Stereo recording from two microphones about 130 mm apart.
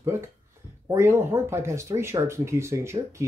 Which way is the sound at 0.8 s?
20° right (ahead or behind).